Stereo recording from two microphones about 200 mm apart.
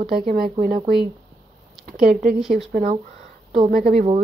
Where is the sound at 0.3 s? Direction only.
45° right (ahead or behind).